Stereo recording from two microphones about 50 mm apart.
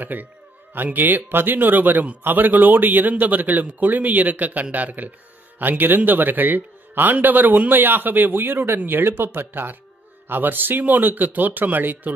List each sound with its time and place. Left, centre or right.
0.0 s a man's voice: right